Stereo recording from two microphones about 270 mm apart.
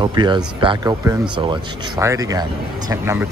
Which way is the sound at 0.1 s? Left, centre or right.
Centre.